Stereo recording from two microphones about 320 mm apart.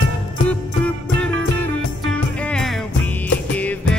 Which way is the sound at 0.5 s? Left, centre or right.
Centre.